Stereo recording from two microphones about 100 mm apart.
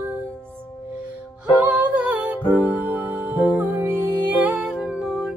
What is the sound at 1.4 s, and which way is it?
Music, 15° right (ahead or behind).